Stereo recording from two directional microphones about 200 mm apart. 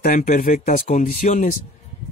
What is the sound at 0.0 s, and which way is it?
Speech, 45° left (ahead or behind).